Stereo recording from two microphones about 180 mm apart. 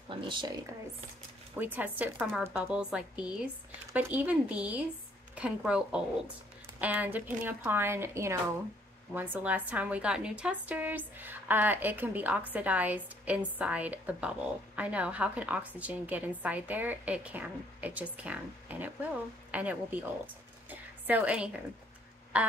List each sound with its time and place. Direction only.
0.1 s speech: 25° right (ahead or behind)
1.6 s a woman's voice: 10° right (ahead or behind)
21.1 s a woman's voice: 5° right (ahead or behind)